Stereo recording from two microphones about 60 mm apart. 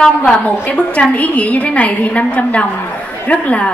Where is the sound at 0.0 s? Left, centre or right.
Centre.